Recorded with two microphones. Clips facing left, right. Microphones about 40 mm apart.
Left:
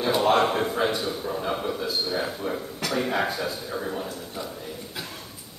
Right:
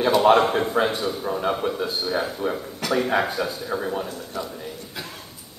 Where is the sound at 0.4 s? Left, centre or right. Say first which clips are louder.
Right 2 dB; centre.